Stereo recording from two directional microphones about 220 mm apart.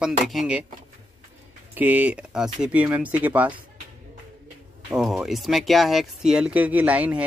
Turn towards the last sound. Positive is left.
turn(degrees=-5)  # may be behind; listen again after turning